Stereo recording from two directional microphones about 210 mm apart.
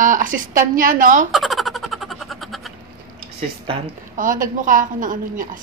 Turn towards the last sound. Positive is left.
turn(degrees=-40)  # may be behind; listen again after turning